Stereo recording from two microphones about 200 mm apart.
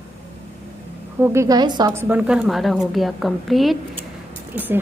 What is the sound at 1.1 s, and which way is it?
A woman's voice, 10° right (ahead or behind).